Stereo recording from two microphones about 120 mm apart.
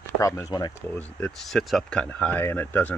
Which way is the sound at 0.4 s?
35° left (ahead or behind).